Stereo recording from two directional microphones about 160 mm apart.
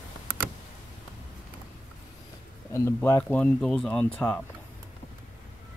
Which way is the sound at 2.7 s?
15° left (ahead or behind).